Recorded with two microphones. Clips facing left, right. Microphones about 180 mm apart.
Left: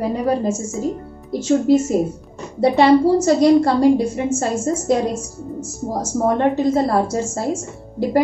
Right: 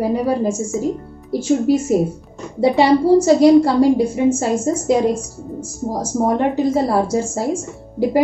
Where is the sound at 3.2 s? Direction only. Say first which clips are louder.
Right 3 dB; 10° right (ahead or behind).